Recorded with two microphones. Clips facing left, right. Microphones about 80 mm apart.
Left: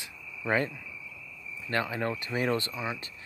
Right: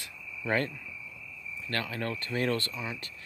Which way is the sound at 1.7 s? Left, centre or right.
Centre.